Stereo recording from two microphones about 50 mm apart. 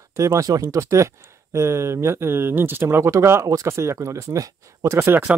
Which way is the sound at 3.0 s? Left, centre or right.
Right.